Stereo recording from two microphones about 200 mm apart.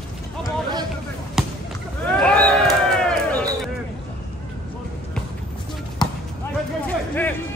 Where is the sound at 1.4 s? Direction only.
Centre (ahead or behind).